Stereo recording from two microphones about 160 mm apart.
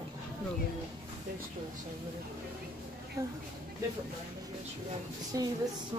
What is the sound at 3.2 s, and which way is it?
Speech, 20° right (ahead or behind).